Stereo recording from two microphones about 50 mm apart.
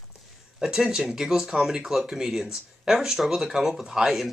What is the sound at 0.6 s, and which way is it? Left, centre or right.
Speech, centre.